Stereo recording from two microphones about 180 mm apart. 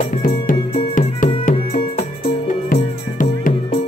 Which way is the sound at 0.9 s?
45° left (ahead or behind).